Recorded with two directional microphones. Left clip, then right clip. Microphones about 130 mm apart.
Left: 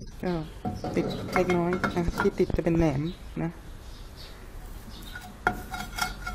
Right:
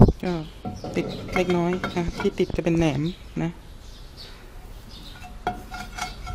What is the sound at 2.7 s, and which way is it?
Speech, 30° right (ahead or behind).